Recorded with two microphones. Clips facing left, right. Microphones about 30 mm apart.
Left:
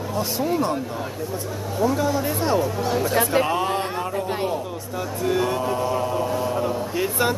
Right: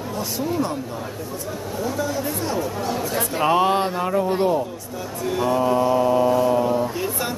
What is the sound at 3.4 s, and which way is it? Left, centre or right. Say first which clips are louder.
Speech: right 5 dB; right.